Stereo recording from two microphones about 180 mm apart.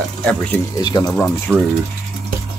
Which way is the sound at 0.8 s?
25° left (ahead or behind).